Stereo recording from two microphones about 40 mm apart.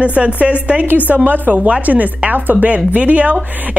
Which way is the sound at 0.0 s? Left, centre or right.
Right.